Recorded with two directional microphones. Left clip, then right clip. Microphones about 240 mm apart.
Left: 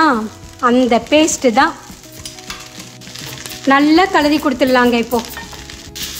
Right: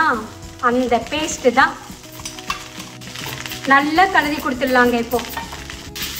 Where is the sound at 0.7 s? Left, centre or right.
Left.